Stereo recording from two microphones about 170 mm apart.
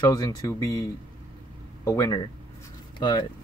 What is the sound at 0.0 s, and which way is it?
Speech, 20° left (ahead or behind).